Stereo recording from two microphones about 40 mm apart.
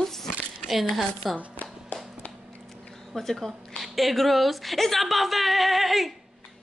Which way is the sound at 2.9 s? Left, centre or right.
Centre.